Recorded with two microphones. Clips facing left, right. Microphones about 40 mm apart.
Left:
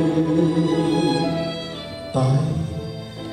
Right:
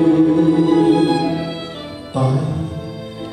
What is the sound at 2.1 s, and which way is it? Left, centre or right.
Music, right.